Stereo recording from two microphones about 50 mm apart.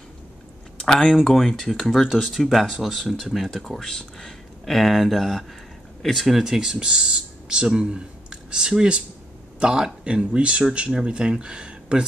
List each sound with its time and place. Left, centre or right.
0.8 s speech: centre